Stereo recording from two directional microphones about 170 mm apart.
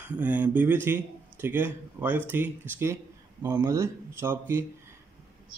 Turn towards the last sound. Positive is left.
turn(degrees=-15)  # may be behind; listen again after turning